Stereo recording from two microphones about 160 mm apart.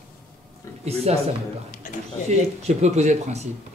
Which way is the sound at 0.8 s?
40° right (ahead or behind).